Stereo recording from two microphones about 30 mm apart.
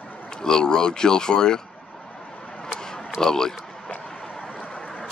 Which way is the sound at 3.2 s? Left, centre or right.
Centre.